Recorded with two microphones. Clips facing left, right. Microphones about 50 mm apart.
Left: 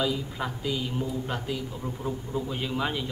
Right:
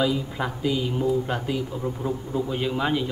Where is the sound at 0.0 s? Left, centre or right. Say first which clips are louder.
Right 4 dB; centre.